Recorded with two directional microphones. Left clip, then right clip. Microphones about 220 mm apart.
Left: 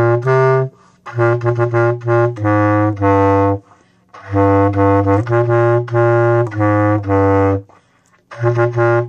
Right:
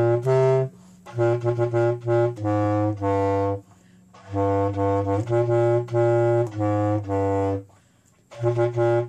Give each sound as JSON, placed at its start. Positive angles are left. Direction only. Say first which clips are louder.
{"t": 0.1, "sound": "music", "louder": "left 7 dB", "side_deg": 30}
{"t": 2.4, "sound": "saxophone", "louder": "left 9 dB", "side_deg": 45}
{"t": 4.3, "sound": "music", "louder": "left 10 dB", "side_deg": 50}
{"t": 5.3, "sound": "music", "louder": "left 4 dB", "side_deg": 25}
{"t": 6.5, "sound": "music", "louder": "left 9 dB", "side_deg": 45}
{"t": 8.4, "sound": "music", "louder": "left 7 dB", "side_deg": 30}